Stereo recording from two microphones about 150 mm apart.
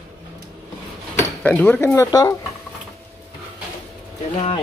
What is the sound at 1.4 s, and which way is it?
Speech, 10° left (ahead or behind).